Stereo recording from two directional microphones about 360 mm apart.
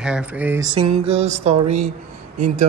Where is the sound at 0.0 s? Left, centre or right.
Centre.